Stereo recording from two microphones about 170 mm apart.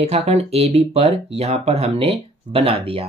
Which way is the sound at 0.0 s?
40° right (ahead or behind).